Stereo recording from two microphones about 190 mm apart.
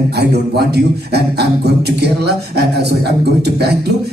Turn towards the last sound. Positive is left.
turn(degrees=-60)  # may be behind; listen again after turning